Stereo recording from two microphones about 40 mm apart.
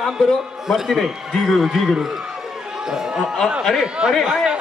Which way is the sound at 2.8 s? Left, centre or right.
Centre.